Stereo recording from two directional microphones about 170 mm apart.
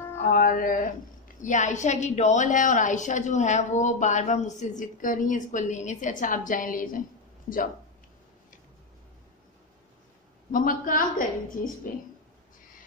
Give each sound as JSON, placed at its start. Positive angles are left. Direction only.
{"t": 0.3, "sound": "music", "side_deg": 55}
{"t": 1.4, "sound": "a woman's voice", "side_deg": 45}
{"t": 10.5, "sound": "a woman's voice", "side_deg": 55}